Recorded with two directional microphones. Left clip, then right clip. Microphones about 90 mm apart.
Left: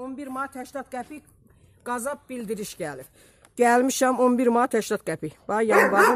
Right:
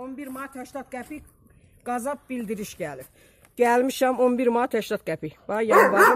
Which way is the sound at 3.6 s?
60° left (ahead or behind).